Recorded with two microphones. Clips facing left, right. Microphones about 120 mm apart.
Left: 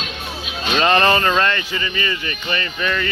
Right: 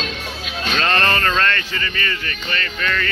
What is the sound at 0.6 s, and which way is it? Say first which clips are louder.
Speech: left 4 dB; 15° left (ahead or behind).